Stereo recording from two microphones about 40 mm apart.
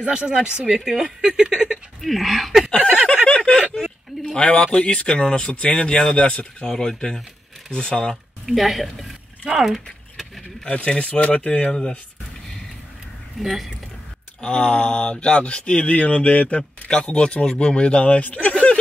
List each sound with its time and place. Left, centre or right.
0.0 s speech: right
0.3 s a woman's voice: centre
2.0 s speech: centre
2.8 s a sound: right
3.3 s a sound: left
4.3 s speech: left
6.1 s speech: left
6.6 s speech: centre
8.5 s speech: centre
10.9 s speech: left
13.4 s speech: centre
14.4 s speech: left